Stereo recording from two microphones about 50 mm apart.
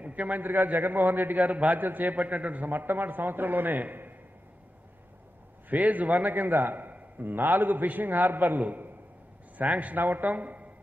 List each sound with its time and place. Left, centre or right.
0.0 s a man's voice: right
5.7 s a man's voice: right